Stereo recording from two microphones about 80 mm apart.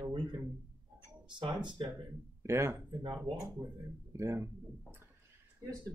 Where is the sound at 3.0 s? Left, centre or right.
Right.